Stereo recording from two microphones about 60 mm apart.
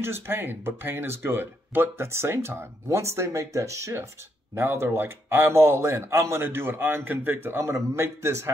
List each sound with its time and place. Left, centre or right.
0.0 s speech: right
4.6 s speech: right
7.6 s speech: right